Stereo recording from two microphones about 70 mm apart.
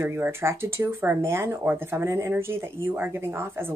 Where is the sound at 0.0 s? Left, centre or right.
Right.